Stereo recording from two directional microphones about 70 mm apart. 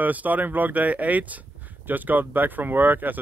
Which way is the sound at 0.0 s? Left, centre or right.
Right.